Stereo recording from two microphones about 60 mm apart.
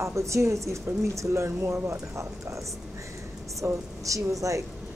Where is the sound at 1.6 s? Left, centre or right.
Right.